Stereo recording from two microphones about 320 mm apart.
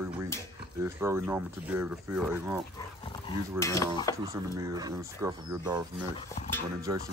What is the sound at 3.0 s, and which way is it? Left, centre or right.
Speech, centre.